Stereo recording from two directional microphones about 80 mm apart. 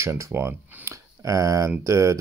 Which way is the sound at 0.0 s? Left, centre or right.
Right.